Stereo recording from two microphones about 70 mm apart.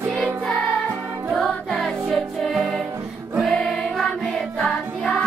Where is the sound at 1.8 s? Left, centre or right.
Centre.